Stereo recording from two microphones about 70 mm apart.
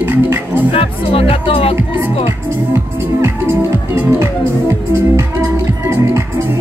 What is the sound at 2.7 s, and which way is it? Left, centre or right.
Music, right.